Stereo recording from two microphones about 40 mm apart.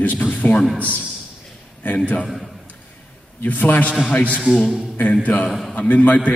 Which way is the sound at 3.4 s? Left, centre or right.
Left.